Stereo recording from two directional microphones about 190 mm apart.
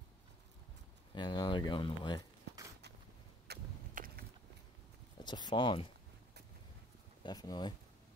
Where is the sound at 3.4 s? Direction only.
50° right (ahead or behind).